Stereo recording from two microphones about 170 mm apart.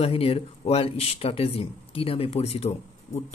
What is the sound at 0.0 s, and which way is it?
A man's voice, 35° left (ahead or behind).